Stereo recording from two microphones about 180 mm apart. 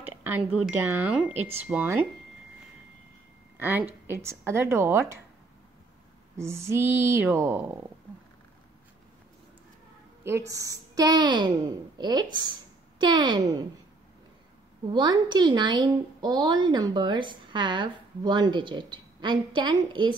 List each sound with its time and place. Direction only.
0.0 s a sound: 10° right (ahead or behind)
0.5 s speech: 10° right (ahead or behind)
3.5 s speech: 10° right (ahead or behind)
6.3 s speech: 15° right (ahead or behind)
10.5 s a woman's voice: 20° right (ahead or behind)
14.9 s a woman's voice: 25° right (ahead or behind)